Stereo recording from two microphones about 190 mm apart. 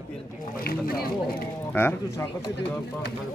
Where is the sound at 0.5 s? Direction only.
50° left (ahead or behind).